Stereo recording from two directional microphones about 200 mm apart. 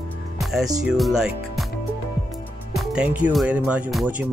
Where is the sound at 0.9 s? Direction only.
Centre (ahead or behind).